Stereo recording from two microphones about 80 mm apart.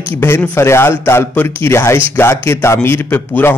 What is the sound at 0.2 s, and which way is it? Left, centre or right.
Speech, left.